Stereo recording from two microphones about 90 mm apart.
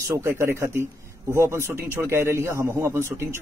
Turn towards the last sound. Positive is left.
turn(degrees=-30)  # may be behind; listen again after turning